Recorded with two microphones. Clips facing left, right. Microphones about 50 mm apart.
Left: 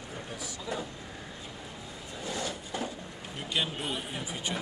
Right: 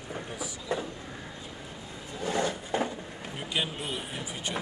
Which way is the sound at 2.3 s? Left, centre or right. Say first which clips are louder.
Right 7 dB; right.